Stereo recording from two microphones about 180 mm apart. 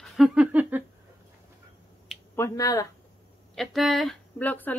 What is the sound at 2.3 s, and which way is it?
Speech, 15° left (ahead or behind).